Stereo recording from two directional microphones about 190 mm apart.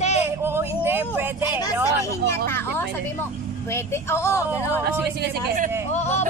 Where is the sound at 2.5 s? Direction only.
10° left (ahead or behind).